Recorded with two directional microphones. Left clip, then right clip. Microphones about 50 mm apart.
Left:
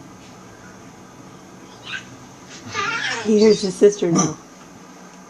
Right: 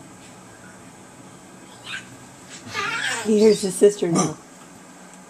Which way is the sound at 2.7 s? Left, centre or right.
Centre.